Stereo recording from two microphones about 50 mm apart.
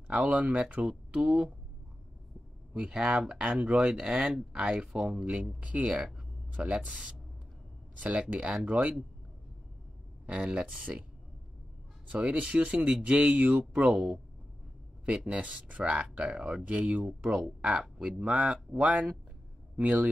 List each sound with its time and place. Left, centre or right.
0.3 s speech: right
2.7 s speech: centre
8.3 s speech: right
10.2 s speech: right
12.1 s speech: right